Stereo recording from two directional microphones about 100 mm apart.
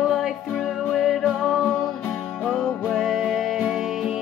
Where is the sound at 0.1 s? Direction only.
Centre (ahead or behind).